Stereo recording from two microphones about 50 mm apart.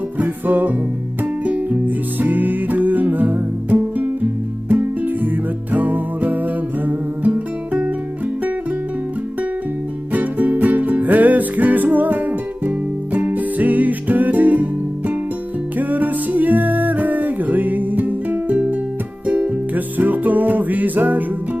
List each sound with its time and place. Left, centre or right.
0.2 s music: right
10.1 s music: right